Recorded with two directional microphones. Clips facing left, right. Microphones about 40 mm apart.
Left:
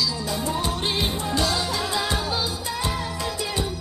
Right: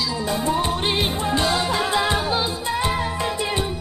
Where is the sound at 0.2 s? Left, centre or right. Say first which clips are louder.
Right 4 dB; right.